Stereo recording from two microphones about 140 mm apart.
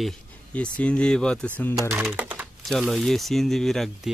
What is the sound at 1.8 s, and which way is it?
Speech, 20° right (ahead or behind).